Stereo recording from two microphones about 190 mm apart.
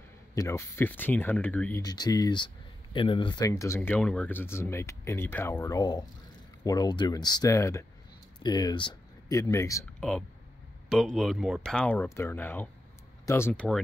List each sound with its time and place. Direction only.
0.3 s speech: 15° left (ahead or behind)
1.8 s speech: 20° left (ahead or behind)
9.9 s speech: 5° left (ahead or behind)